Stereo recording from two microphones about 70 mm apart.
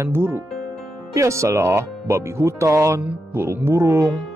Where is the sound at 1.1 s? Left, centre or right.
Right.